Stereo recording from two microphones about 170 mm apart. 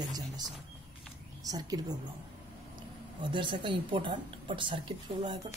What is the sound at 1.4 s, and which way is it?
Speech, 20° right (ahead or behind).